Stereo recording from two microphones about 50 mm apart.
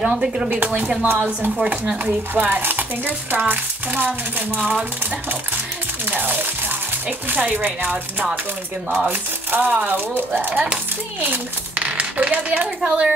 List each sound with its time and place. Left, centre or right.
0.0 s speech: centre
0.5 s speech: right
4.6 s speech: right
6.0 s a child's voice: right